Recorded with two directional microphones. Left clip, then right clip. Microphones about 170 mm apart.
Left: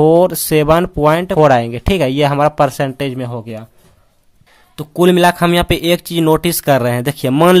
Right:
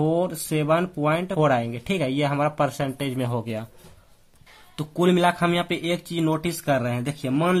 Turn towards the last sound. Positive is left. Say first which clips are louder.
# left 13 dB
turn(degrees=50)  # may be behind; listen again after turning